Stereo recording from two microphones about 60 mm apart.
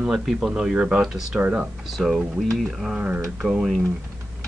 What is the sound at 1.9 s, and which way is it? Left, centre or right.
Speech, centre.